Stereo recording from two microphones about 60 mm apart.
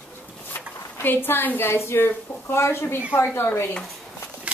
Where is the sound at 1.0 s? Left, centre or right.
Left.